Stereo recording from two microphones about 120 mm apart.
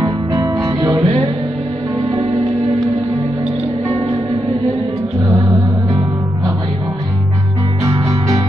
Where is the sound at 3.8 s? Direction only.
45° right (ahead or behind).